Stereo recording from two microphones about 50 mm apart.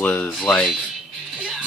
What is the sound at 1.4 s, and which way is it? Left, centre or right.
Music, right.